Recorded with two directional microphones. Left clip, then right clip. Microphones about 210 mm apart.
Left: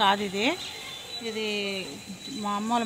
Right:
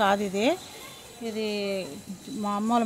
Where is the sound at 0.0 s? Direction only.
55° right (ahead or behind).